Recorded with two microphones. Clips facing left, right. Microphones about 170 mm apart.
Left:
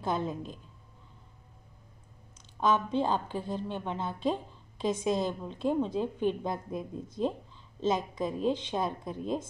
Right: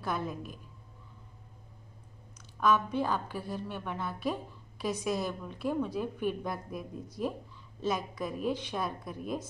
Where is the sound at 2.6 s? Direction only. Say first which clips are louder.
Left 1 dB; 25° left (ahead or behind).